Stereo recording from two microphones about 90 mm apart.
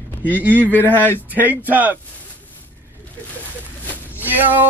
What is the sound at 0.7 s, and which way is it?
Speech, 20° left (ahead or behind).